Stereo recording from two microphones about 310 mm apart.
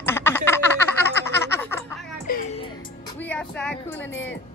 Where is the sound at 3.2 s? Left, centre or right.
Centre.